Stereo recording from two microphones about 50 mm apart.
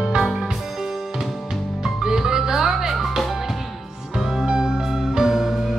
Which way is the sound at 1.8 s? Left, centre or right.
Centre.